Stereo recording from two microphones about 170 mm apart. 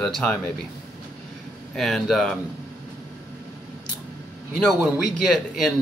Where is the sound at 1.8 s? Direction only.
Centre (ahead or behind).